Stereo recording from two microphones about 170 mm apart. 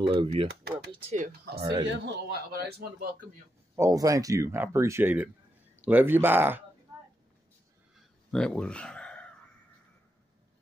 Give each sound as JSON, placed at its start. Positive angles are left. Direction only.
{"t": 0.1, "sound": "speech", "side_deg": -35}
{"t": 0.7, "sound": "a sound", "side_deg": -80}
{"t": 1.6, "sound": "speech", "side_deg": -30}
{"t": 1.9, "sound": "a man's voice", "side_deg": -80}
{"t": 3.7, "sound": "speech", "side_deg": -20}
{"t": 8.3, "sound": "speech", "side_deg": 5}